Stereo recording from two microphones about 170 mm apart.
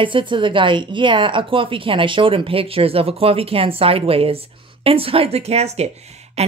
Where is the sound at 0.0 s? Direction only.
30° right (ahead or behind).